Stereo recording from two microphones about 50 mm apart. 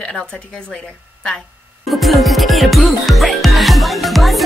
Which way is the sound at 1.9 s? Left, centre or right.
Centre.